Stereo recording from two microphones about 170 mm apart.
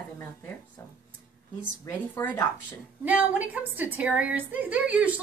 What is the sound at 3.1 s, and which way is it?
A woman's voice, 10° right (ahead or behind).